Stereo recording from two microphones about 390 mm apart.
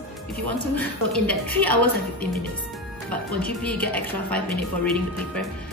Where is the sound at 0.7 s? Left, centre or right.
Centre.